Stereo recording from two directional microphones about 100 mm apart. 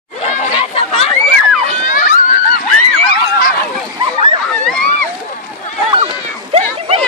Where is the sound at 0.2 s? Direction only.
75° left (ahead or behind).